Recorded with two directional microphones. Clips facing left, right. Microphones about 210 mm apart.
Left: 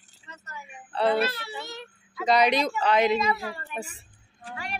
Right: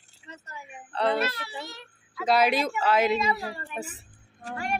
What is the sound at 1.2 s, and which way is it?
Speech, 30° left (ahead or behind).